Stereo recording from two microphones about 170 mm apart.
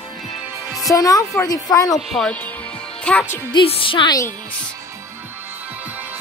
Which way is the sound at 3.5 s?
30° left (ahead or behind).